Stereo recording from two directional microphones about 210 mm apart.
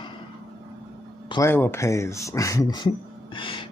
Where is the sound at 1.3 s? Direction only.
15° left (ahead or behind).